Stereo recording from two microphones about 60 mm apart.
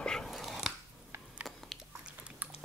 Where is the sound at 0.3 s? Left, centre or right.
Centre.